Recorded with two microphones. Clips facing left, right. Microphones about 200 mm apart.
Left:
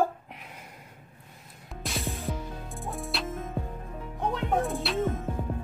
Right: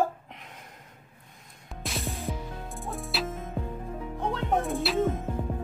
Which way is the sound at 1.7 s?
Centre (ahead or behind).